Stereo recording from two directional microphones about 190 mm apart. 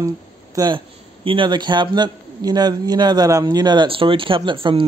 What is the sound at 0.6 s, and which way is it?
A man's voice, 25° right (ahead or behind).